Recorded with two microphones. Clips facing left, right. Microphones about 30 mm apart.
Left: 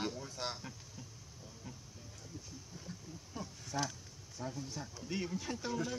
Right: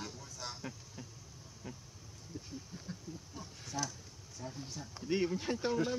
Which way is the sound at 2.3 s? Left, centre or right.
Centre.